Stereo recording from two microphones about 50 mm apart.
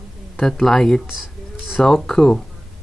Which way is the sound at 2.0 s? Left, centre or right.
Centre.